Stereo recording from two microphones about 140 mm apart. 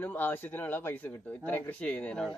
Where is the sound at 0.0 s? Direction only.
15° left (ahead or behind).